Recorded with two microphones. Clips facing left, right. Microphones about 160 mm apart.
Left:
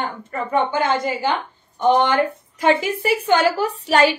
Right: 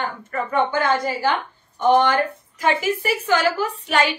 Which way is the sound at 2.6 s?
25° left (ahead or behind).